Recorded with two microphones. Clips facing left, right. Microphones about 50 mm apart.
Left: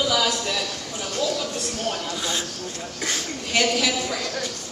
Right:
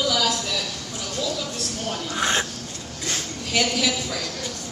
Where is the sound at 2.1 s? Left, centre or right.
Right.